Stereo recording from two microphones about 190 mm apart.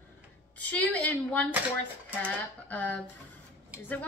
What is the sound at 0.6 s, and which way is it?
A woman's voice, 10° left (ahead or behind).